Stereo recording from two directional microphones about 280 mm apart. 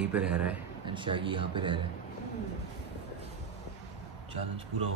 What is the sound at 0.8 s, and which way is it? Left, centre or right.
Speech, centre.